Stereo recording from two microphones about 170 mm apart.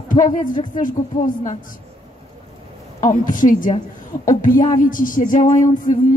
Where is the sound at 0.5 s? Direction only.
50° left (ahead or behind).